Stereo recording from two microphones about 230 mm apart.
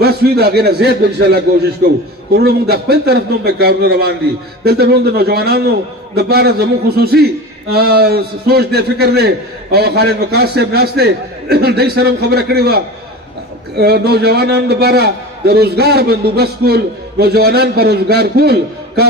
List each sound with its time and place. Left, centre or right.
0.0 s a man's voice: right